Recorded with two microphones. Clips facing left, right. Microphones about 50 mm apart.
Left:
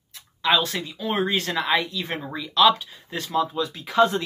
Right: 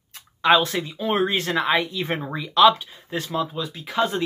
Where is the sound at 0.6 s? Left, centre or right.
Centre.